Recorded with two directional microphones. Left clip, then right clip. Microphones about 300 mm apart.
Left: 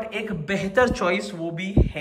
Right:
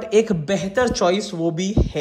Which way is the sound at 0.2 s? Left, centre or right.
Centre.